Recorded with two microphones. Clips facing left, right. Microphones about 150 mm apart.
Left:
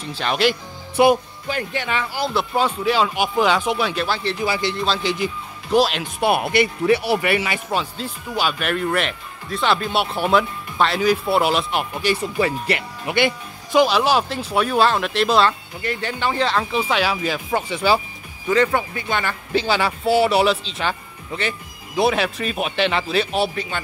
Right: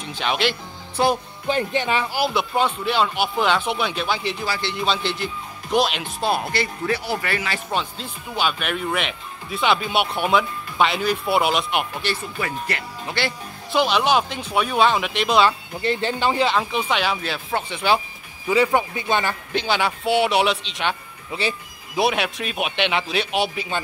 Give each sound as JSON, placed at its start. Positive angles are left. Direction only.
{"t": 0.2, "sound": "speech", "side_deg": 0}
{"t": 0.5, "sound": "speech", "side_deg": 15}
{"t": 1.5, "sound": "speech", "side_deg": -20}
{"t": 6.4, "sound": "speech", "side_deg": 25}
{"t": 7.7, "sound": "speech", "side_deg": 5}
{"t": 12.4, "sound": "speech", "side_deg": 25}
{"t": 13.7, "sound": "speech", "side_deg": 5}
{"t": 15.8, "sound": "speech", "side_deg": -25}
{"t": 16.3, "sound": "speech", "side_deg": -5}
{"t": 18.5, "sound": "speech", "side_deg": -15}
{"t": 19.5, "sound": "speech", "side_deg": 5}
{"t": 21.3, "sound": "speech", "side_deg": -10}